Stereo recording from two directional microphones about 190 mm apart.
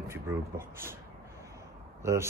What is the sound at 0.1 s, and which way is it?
Speech, 15° right (ahead or behind).